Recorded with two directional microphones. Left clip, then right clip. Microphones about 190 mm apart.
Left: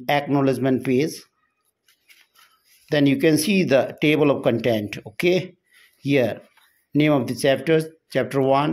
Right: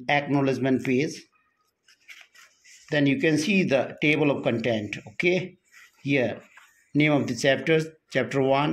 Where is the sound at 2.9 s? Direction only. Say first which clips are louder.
Left 5 dB; 30° left (ahead or behind).